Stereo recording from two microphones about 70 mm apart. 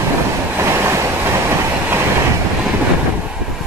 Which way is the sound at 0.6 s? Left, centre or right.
Right.